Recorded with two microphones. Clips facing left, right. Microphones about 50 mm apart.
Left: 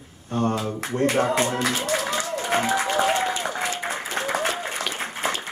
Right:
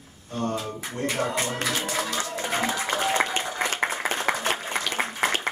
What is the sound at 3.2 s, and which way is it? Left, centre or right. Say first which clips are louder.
Applause: left 1 dB; right.